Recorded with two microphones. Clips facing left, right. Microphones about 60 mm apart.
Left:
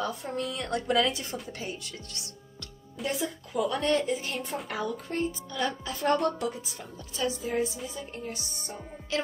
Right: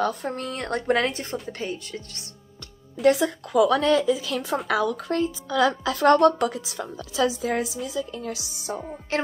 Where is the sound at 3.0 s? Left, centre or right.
Right.